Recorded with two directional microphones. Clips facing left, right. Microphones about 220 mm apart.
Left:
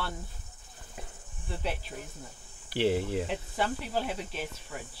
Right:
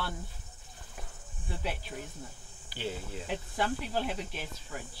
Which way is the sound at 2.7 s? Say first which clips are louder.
Left 11 dB; 80° left.